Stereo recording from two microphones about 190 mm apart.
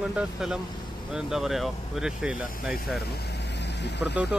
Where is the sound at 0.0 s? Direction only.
5° right (ahead or behind).